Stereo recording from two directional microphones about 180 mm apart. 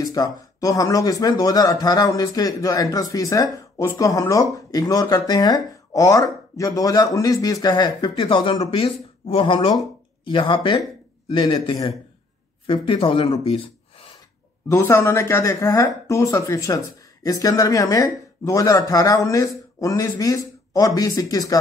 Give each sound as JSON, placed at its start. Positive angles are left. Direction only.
{"t": 0.0, "sound": "speech", "side_deg": 20}
{"t": 14.7, "sound": "speech", "side_deg": 15}